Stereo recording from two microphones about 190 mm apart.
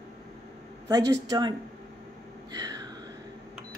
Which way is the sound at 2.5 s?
20° right (ahead or behind).